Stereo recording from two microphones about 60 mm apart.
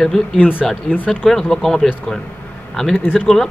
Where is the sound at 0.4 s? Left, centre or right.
Left.